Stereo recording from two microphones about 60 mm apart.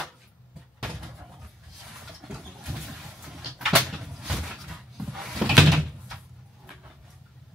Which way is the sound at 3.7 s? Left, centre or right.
Centre.